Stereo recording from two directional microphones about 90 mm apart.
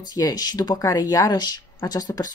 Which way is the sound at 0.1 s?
45° left (ahead or behind).